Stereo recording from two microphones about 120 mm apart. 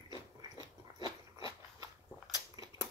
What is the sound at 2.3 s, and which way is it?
Crushing, 30° right (ahead or behind).